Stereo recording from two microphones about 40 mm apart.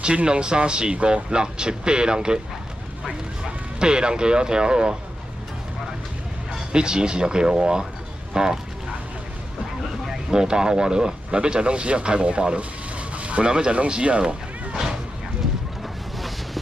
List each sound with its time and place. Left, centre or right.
0.0 s speech: right
3.8 s speech: right
6.7 s speech: right
10.3 s speech: right